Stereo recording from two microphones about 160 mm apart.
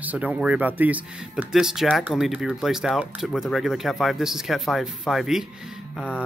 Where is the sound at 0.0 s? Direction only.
10° right (ahead or behind).